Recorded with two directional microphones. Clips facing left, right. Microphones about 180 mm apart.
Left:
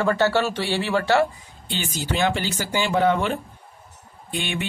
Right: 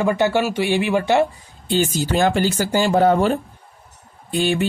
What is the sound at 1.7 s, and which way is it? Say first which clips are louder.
Speech: right 8 dB; 40° right (ahead or behind).